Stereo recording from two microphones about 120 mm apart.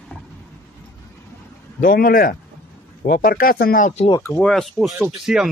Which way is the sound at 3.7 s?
75° left (ahead or behind).